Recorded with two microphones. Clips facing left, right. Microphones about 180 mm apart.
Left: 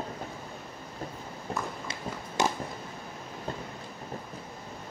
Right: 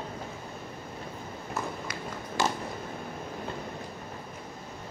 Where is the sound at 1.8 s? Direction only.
20° left (ahead or behind).